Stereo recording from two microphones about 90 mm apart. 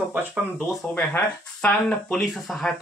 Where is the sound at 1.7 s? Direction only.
10° left (ahead or behind).